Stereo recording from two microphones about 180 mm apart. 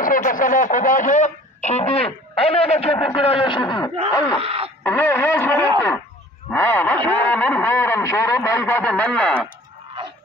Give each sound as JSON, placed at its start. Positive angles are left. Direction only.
{"t": 0.0, "sound": "speech", "side_deg": 50}
{"t": 4.4, "sound": "speech", "side_deg": -30}
{"t": 4.8, "sound": "speech", "side_deg": 10}